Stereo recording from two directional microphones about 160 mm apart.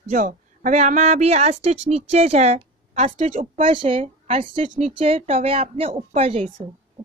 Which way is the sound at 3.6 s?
35° right (ahead or behind).